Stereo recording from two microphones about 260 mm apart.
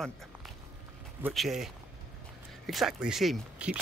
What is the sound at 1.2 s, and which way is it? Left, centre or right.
Speech, centre.